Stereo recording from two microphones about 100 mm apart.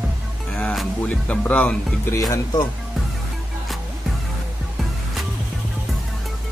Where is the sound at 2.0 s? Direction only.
30° left (ahead or behind).